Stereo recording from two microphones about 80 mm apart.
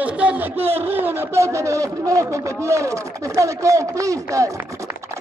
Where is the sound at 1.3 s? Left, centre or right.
Right.